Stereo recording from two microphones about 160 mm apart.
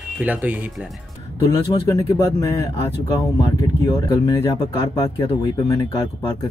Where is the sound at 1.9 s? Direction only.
20° left (ahead or behind).